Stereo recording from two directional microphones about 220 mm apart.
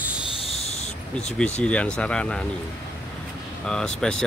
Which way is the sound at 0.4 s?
30° left (ahead or behind).